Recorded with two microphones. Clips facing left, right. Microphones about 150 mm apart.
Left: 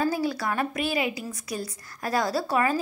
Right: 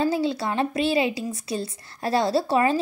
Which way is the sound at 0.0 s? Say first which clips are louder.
Right 3 dB; 25° right (ahead or behind).